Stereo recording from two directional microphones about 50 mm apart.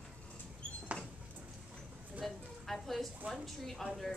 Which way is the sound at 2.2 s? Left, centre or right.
Centre.